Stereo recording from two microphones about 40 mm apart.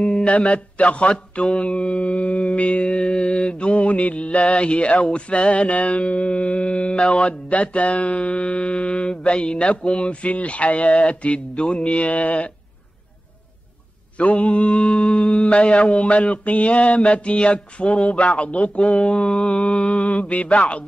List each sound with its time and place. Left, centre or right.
0.0 s a sound: left
0.3 s mantra: left
1.1 s music: left
14.1 s mantra: left